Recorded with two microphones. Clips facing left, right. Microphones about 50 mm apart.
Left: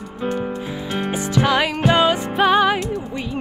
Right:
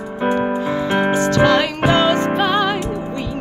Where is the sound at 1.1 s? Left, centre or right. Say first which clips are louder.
Right 4 dB; centre.